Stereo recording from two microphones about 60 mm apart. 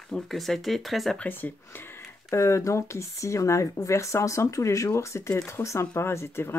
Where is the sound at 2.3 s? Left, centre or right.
Left.